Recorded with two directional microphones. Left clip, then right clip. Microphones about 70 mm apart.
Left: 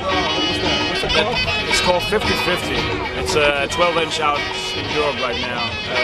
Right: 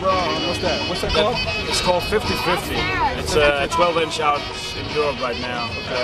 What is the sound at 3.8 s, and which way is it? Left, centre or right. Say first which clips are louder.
Speech: left 1 dB; left.